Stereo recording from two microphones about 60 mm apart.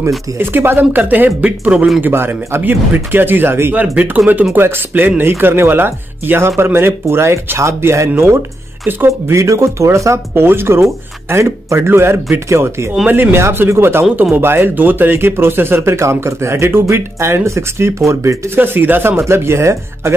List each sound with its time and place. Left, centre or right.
0.4 s speech: right
2.0 s speech: right
3.7 s speech: right
4.6 s speech: right
8.2 s speech: right
10.3 s speech: right
13.0 s speech: right
13.4 s speech: right
18.6 s speech: right
19.1 s speech: right